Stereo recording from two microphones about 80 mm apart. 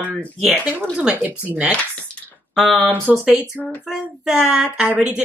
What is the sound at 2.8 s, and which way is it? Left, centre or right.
Speech, right.